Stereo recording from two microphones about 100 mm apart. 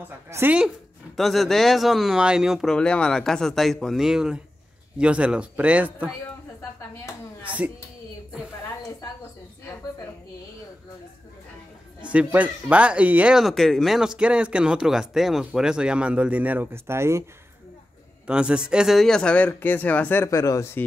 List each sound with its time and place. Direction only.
0.3 s a woman's voice: 20° right (ahead or behind)
1.1 s speech: centre (ahead or behind)
2.7 s speech: 10° left (ahead or behind); by 6.1 s 15° right (ahead or behind)
7.4 s speech: 15° right (ahead or behind)
12.0 s a sound: 15° right (ahead or behind)
12.3 s speech: 15° right (ahead or behind)
13.4 s speech: centre (ahead or behind); by 17.2 s 25° right (ahead or behind)
18.2 s speech: 10° right (ahead or behind); by 20.2 s 20° left (ahead or behind)
20.2 s speech: 35° left (ahead or behind)